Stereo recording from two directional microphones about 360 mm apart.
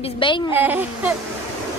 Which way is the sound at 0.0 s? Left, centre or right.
Centre.